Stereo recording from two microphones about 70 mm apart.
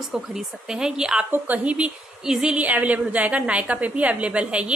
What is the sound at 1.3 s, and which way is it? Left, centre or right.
A woman's voice, right.